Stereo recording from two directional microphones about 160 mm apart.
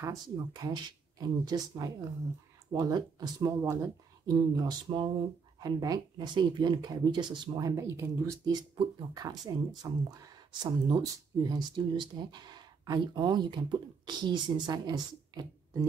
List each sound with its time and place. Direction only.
0.0 s speech: 20° right (ahead or behind)
4.6 s speech: 30° right (ahead or behind)